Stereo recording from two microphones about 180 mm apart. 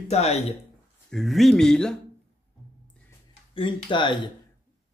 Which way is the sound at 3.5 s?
25° left (ahead or behind).